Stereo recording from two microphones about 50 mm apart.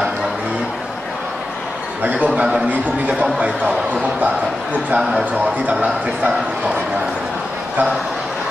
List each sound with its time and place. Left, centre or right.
2.0 s a sound: right
3.2 s speech: right
4.9 s speech: centre
5.7 s a man's voice: right